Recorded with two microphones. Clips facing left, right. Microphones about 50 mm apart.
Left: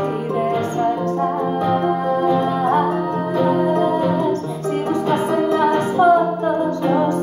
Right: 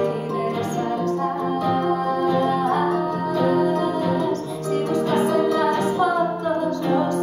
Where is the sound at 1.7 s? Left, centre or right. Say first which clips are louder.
Left 2 dB; left.